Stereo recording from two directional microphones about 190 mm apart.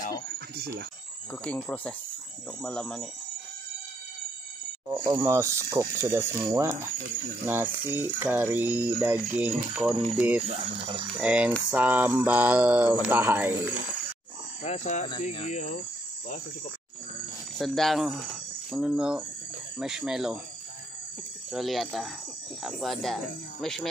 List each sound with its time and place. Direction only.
1.4 s speech: 5° left (ahead or behind)
4.8 s a sound: 15° right (ahead or behind)
10.5 s speech: 30° right (ahead or behind)
11.1 s a sound: 5° right (ahead or behind)
14.6 s speech: 35° left (ahead or behind)
17.6 s speech: centre (ahead or behind)
21.5 s speech: centre (ahead or behind)